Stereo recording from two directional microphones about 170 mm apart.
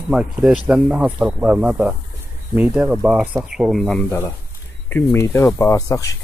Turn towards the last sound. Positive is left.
turn(degrees=20)  # may be behind; listen again after turning